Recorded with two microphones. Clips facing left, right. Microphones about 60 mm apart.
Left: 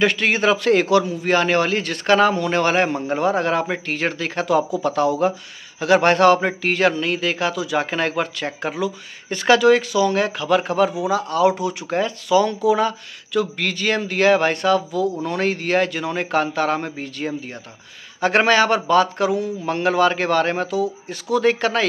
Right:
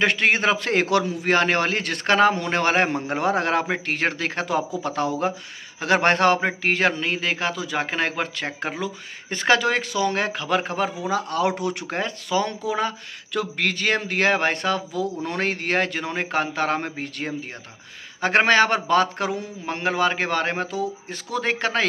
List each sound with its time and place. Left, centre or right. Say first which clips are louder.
0.0 s a man's voice: left 2 dB; right
11.9 s a man's voice: left 9 dB; right
19.6 s a man's voice: left 4 dB; right